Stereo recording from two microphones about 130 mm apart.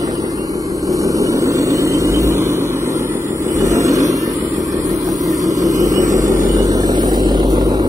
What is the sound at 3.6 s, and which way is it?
Vehicle, 25° right (ahead or behind).